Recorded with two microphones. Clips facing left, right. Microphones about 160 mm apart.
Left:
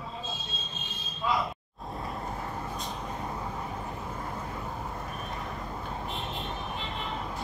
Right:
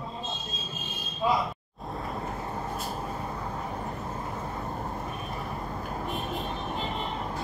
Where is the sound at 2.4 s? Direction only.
30° right (ahead or behind).